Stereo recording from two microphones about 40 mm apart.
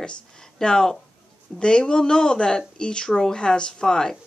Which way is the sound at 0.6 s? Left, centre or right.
Centre.